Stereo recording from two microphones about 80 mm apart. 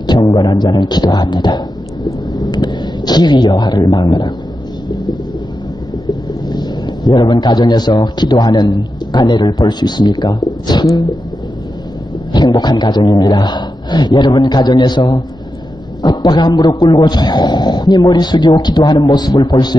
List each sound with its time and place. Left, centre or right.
0.0 s music: left
2.3 s a sound: left
6.5 s a man's voice: left
12.3 s a man's voice: left